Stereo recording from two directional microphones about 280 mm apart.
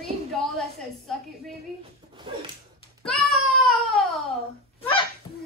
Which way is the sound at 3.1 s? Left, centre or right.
Centre.